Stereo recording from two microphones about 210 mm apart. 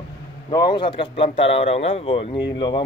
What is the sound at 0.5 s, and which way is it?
Speech, 20° left (ahead or behind).